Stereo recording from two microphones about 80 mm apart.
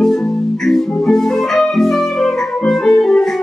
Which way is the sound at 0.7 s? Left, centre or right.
Centre.